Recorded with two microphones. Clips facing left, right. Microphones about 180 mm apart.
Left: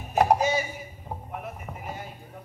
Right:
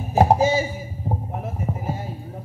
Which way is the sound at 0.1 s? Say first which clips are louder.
Right 5 dB; 30° right (ahead or behind).